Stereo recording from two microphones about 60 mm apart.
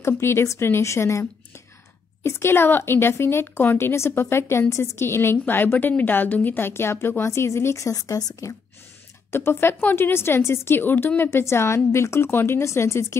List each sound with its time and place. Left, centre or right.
0.0 s a woman's voice: left
9.3 s a woman's voice: left
9.8 s a woman's voice: left
11.4 s a woman's voice: left